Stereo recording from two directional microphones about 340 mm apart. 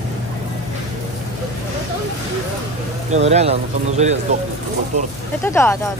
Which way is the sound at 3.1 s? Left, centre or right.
Centre.